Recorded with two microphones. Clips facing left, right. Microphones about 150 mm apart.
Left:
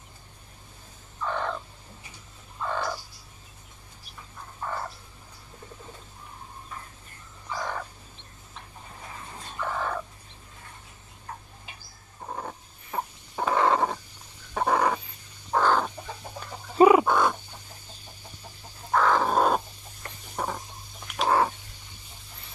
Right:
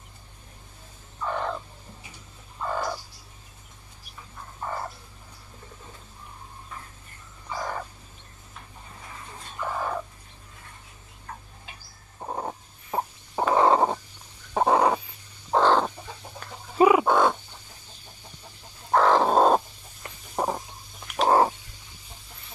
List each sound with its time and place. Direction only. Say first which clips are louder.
1.2 s crow: right 1 dB; 10° right (ahead or behind)
2.6 s turkey: right 1 dB; 10° right (ahead or behind)
7.5 s turkey: right 1 dB; 5° right (ahead or behind)
9.6 s fowl: right 1 dB; 10° right (ahead or behind)
12.3 s stomach rumble: right 4 dB; 30° right (ahead or behind)
13.6 s frog: right 3 dB; 25° right (ahead or behind)
14.5 s dog: right 4 dB; 25° right (ahead or behind)
15.5 s bird: right 3 dB; 25° right (ahead or behind)
16.7 s a sound: left 2 dB; centre (ahead or behind)
17.0 s frog: right 3 dB; 20° right (ahead or behind)
18.9 s bird: right 3 dB; 30° right (ahead or behind)
20.4 s a sound: right 4 dB; 30° right (ahead or behind)